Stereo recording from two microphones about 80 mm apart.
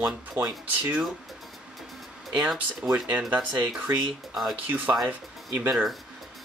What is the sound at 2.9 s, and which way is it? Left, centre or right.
Speech, right.